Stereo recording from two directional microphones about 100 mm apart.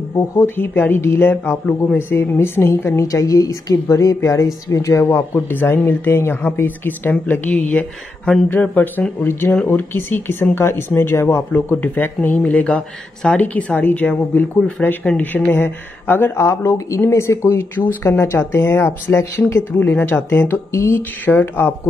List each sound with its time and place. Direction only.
0.1 s speech: 25° left (ahead or behind)
11.5 s speech: 15° left (ahead or behind)